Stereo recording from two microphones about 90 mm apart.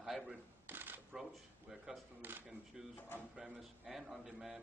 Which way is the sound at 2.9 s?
20° left (ahead or behind).